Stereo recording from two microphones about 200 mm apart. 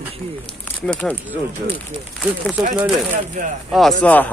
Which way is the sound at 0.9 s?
5° left (ahead or behind).